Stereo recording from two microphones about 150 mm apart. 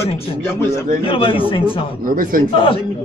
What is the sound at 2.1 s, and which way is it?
Speech, 70° right (ahead or behind).